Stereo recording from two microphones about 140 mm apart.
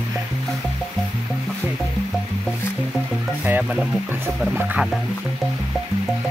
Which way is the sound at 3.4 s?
10° right (ahead or behind).